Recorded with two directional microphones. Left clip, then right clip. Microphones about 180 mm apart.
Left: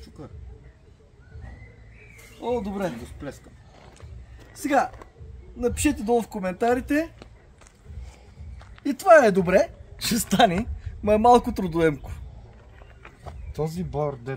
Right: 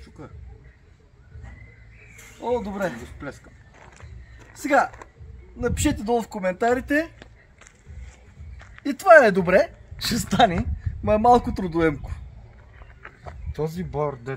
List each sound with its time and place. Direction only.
2.4 s speech: centre (ahead or behind)
3.8 s a sound: 5° left (ahead or behind)
5.6 s speech: 5° left (ahead or behind)
8.5 s speech: centre (ahead or behind)
9.9 s a woman's voice: 15° left (ahead or behind)
13.7 s speech: 10° left (ahead or behind)